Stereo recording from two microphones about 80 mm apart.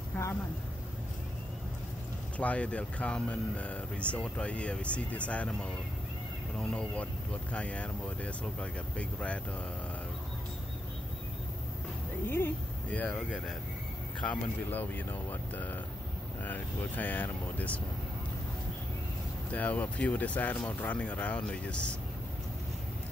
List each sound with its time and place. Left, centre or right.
0.1 s vehicle: left
2.3 s speech: centre
12.3 s speech: left
14.2 s speech: centre
19.5 s speech: centre